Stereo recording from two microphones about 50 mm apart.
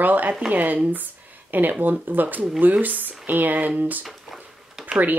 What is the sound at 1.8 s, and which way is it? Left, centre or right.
Speech, right.